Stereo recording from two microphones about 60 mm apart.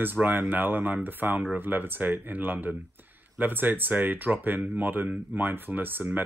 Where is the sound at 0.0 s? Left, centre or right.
Right.